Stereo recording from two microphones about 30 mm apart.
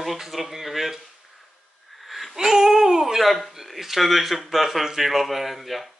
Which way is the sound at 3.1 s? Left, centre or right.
Centre.